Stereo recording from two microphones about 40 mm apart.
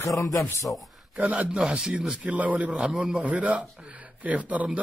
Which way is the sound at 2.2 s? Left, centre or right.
Right.